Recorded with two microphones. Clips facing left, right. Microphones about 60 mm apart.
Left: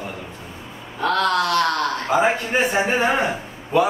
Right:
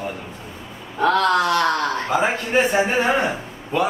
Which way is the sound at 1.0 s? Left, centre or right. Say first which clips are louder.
Right 2 dB; centre.